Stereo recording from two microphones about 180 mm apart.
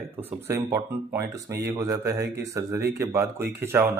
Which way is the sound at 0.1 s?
10° right (ahead or behind).